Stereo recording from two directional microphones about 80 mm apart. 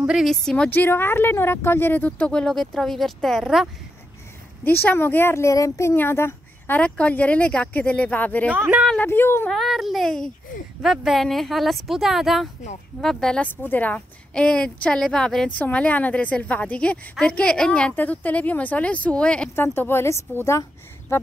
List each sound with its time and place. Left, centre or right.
0.2 s speech: centre
0.7 s speech: left; by 3.6 s centre
4.6 s speech: left
6.8 s speech: centre
8.5 s speech: centre
8.9 s speech: left
9.5 s speech: centre
13.4 s speech: left
19.5 s a woman's voice: left